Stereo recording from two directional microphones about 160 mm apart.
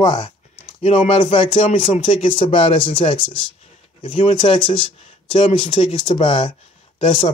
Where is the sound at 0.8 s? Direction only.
45° left (ahead or behind).